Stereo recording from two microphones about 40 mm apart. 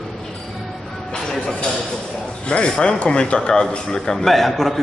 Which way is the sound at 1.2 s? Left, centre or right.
Centre.